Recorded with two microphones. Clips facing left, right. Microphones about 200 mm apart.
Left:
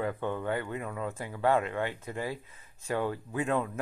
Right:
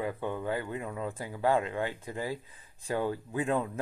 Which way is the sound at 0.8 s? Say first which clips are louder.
Even; 25° right (ahead or behind).